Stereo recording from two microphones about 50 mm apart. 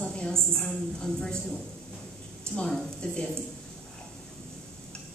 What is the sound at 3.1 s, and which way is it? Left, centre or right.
Speech, centre.